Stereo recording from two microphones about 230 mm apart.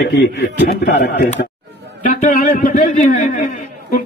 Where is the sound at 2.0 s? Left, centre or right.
Left.